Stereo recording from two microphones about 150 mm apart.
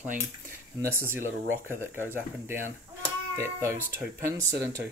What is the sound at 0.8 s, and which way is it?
Speech, 15° right (ahead or behind).